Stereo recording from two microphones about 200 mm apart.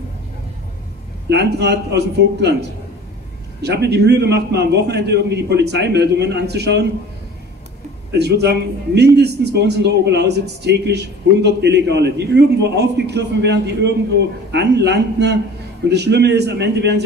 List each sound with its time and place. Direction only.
1.3 s a man's voice: 55° right (ahead or behind)
3.6 s a man's voice: 55° right (ahead or behind)
8.1 s a man's voice: 55° right (ahead or behind)